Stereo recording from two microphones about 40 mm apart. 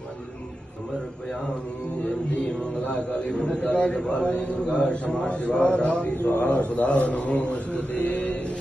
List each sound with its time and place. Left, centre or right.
3.2 s a man's voice: left
7.9 s mantra: left